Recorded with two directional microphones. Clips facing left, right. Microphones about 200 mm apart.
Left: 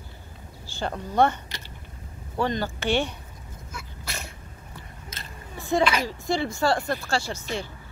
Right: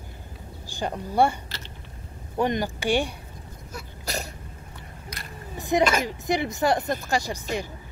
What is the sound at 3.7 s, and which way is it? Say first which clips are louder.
Sneeze: right 6 dB; 40° right (ahead or behind).